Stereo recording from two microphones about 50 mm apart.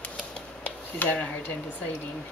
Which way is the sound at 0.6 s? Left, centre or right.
Left.